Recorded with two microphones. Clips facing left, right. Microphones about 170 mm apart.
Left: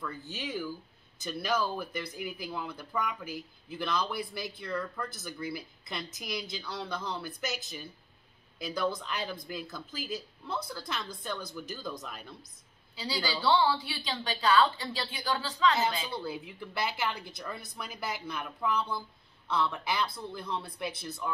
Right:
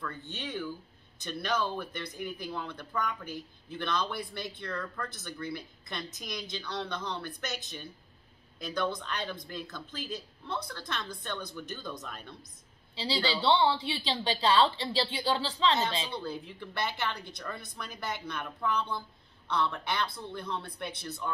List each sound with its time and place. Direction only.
0.0 s a woman's voice: 5° left (ahead or behind)
12.9 s a woman's voice: 30° right (ahead or behind)
16.1 s a woman's voice: 5° left (ahead or behind)